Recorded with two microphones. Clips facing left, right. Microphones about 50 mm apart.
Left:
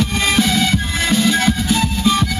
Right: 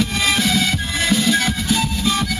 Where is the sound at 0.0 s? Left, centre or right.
Centre.